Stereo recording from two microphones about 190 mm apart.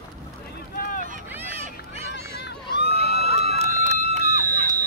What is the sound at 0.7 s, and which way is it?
Vehicle, 50° left (ahead or behind).